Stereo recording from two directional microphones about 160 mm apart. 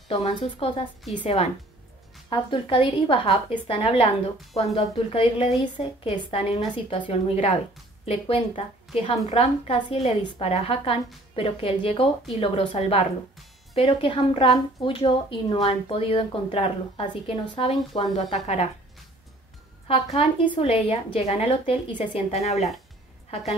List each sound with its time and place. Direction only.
0.1 s a woman's voice: 40° left (ahead or behind)
20.2 s a woman's voice: 35° left (ahead or behind)